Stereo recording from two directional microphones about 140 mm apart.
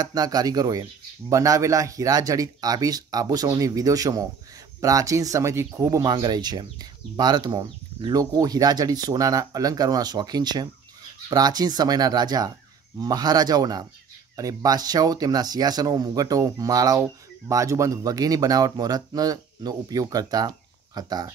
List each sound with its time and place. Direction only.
0.0 s speech: 25° right (ahead or behind)